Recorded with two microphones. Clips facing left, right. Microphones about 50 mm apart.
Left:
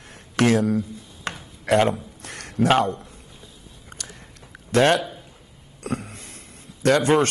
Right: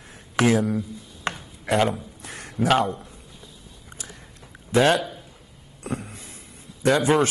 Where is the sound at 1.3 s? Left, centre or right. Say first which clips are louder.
Left 4 dB; centre.